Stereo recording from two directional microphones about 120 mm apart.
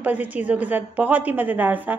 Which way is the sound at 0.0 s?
15° right (ahead or behind).